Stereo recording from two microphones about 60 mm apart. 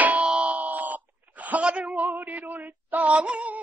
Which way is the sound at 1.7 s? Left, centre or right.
Right.